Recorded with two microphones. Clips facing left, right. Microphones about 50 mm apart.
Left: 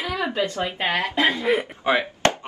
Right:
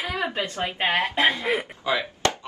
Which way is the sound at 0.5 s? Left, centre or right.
Right.